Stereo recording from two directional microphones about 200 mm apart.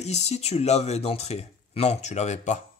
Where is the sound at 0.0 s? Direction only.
35° left (ahead or behind).